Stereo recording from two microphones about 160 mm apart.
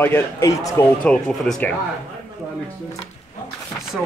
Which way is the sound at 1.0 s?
5° left (ahead or behind).